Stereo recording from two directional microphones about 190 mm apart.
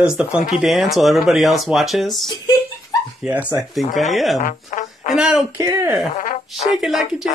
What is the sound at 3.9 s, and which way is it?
Speech, 40° left (ahead or behind).